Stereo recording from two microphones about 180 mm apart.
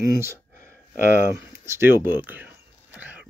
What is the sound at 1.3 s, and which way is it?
Speech, 15° right (ahead or behind).